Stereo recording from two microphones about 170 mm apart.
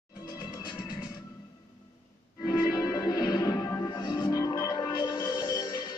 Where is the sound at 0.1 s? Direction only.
25° left (ahead or behind).